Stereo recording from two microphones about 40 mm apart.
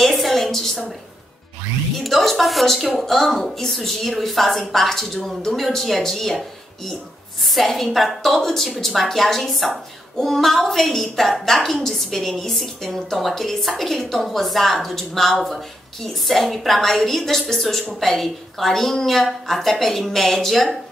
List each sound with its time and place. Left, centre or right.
0.0 s a woman's voice: centre
2.0 s a woman's voice: centre